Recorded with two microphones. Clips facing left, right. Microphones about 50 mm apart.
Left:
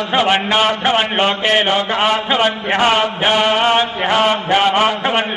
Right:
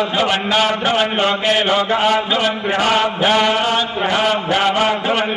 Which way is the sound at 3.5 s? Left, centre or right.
Left.